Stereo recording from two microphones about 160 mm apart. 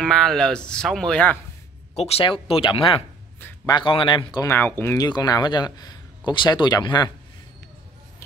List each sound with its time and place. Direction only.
0.0 s speech: 5° left (ahead or behind)
2.0 s speech: 40° left (ahead or behind)
4.5 s speech: 15° left (ahead or behind)
5.0 s speech: 25° left (ahead or behind)